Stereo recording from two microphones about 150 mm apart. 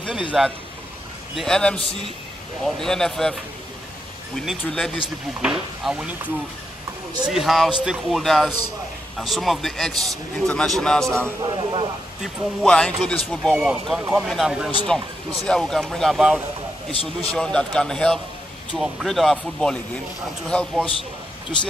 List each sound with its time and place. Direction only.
0.3 s a man's voice: centre (ahead or behind)
4.4 s a man's voice: centre (ahead or behind)
7.2 s a man's voice: centre (ahead or behind)
11.4 s speech: 35° right (ahead or behind)
12.6 s a man's voice: 5° left (ahead or behind)
16.9 s a man's voice: 40° left (ahead or behind)
17.3 s a man's voice: 5° left (ahead or behind)